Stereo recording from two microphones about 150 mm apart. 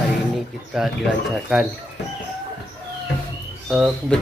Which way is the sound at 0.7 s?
Centre (ahead or behind).